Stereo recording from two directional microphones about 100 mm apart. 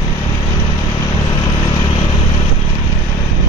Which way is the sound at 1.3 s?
45° left (ahead or behind).